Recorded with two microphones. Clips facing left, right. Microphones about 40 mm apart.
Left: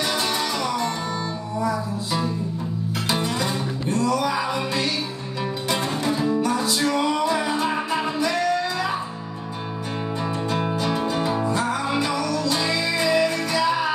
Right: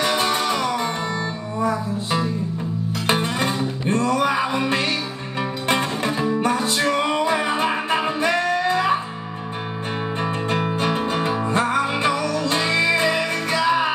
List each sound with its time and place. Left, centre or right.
0.0 s music: right
10.2 s music: right